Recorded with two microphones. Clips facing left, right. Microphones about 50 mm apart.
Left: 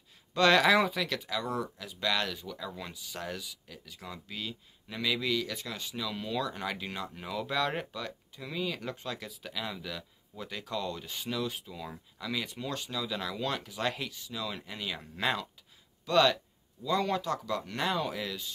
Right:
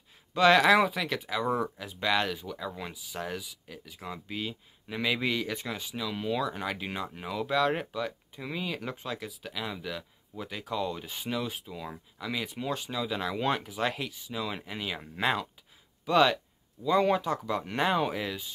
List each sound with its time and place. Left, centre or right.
0.3 s speech: centre; by 5.8 s right
5.8 s speech: centre; by 13.7 s right
13.7 s speech: centre